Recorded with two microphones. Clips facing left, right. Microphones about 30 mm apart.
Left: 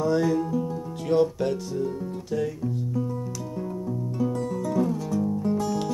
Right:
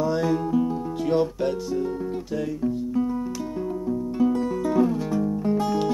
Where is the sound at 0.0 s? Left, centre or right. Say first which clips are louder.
Even; centre.